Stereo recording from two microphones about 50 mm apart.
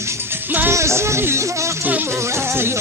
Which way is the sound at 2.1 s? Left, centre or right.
Right.